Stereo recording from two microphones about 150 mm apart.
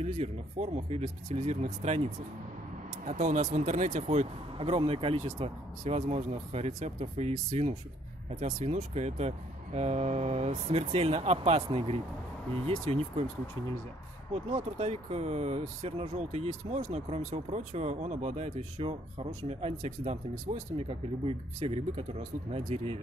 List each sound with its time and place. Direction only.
0.0 s speech: 45° right (ahead or behind)
14.3 s speech: 45° right (ahead or behind)